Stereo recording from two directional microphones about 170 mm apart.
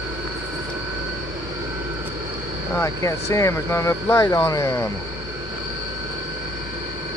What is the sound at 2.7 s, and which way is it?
Speech, 20° left (ahead or behind).